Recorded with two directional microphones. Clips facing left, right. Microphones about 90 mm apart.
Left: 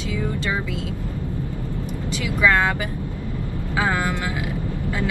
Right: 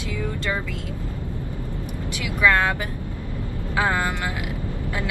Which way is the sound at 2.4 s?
15° left (ahead or behind).